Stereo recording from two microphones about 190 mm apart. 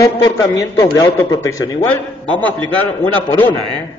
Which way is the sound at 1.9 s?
10° left (ahead or behind).